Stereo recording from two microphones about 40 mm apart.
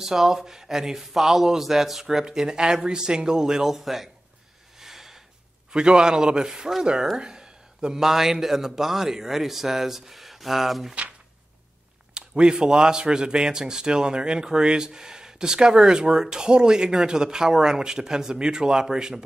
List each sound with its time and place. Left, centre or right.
0.0 s a man's voice: centre
4.7 s a sound: centre
5.7 s a man's voice: right
12.1 s speech: right